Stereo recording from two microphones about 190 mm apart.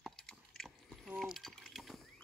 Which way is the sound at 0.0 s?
Centre (ahead or behind).